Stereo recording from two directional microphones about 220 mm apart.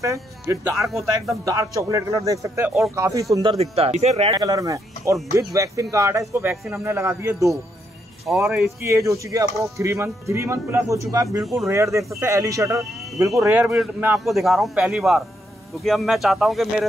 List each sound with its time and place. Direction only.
0.0 s speech: 15° right (ahead or behind)
0.7 s a man's voice: centre (ahead or behind)
1.4 s a man's voice: 15° right (ahead or behind)
11.4 s a man's voice: centre (ahead or behind)
11.7 s a man's voice: 15° right (ahead or behind)